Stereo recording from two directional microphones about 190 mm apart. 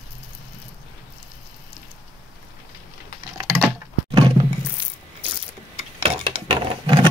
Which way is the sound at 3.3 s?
5° right (ahead or behind).